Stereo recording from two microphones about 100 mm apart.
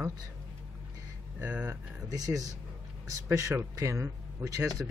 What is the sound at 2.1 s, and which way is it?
Speech, 35° right (ahead or behind).